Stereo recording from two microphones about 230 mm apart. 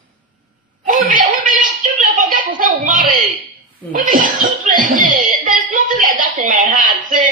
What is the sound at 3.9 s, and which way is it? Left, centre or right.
Speech, right.